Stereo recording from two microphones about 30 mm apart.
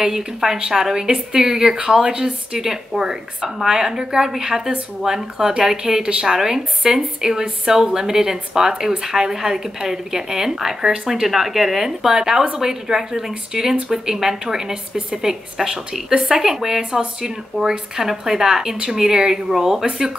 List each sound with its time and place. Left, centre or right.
0.0 s a woman's voice: centre
3.0 s a woman's voice: centre
16.3 s speech: centre